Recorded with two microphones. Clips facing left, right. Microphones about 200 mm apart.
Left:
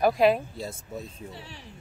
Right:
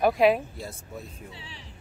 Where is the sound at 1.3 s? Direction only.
50° left (ahead or behind).